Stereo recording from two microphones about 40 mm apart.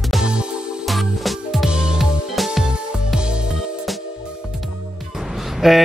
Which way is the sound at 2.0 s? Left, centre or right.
Centre.